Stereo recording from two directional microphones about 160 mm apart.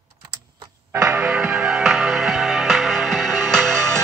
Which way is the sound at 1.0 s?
10° right (ahead or behind).